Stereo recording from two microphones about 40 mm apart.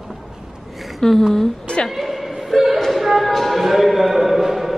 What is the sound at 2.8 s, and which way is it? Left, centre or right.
Speech, centre.